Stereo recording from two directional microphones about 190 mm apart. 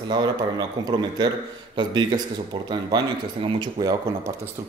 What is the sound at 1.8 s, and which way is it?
Speech, 25° right (ahead or behind).